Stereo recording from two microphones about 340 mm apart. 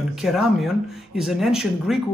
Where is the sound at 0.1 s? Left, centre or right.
Centre.